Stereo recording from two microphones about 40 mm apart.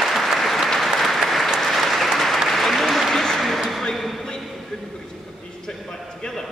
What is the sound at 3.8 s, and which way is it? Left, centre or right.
Basketball bounce, centre.